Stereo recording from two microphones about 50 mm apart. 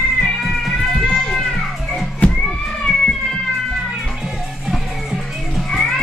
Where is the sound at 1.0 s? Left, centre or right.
Centre.